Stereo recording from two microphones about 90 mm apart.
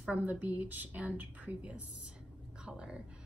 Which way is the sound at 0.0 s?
15° right (ahead or behind).